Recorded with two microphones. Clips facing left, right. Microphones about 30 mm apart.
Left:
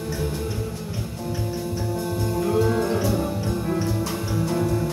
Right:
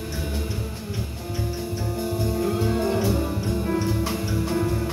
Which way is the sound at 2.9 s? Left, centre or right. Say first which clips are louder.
Even; centre.